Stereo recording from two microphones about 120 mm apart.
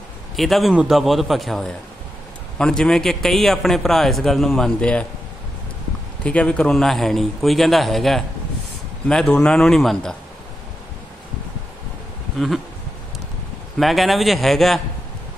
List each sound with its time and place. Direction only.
0.4 s a man's voice: centre (ahead or behind)
6.2 s a man's voice: 10° left (ahead or behind)
13.7 s a man's voice: centre (ahead or behind)